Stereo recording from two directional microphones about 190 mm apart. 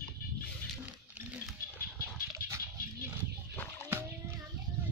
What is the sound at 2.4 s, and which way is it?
Dog, 50° left (ahead or behind).